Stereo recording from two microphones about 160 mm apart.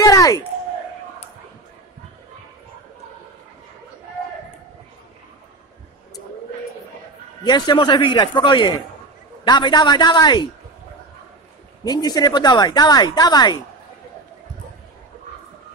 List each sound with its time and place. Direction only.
0.0 s a sound: 20° left (ahead or behind)
7.4 s speech: 25° left (ahead or behind)
11.8 s speech: 25° left (ahead or behind)